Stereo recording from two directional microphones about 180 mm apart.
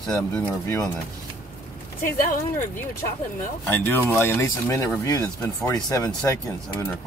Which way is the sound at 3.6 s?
10° left (ahead or behind).